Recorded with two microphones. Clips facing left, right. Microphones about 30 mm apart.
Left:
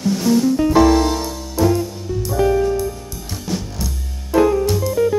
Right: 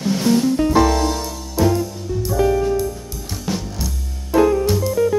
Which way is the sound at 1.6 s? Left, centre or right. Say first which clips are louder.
Left 1 dB; centre.